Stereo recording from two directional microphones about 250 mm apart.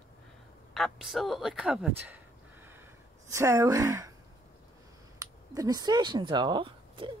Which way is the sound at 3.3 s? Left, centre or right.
Centre.